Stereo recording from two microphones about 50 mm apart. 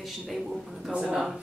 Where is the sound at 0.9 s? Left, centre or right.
Centre.